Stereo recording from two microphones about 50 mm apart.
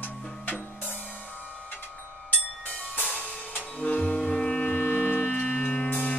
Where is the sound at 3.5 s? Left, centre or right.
Left.